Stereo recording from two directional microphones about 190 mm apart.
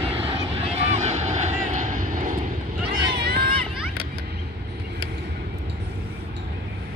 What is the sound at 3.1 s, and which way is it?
Run, 60° right (ahead or behind).